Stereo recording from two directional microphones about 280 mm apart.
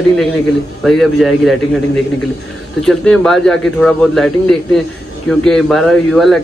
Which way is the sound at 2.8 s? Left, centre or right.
Centre.